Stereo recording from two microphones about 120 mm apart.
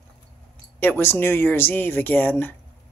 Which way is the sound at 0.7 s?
15° left (ahead or behind).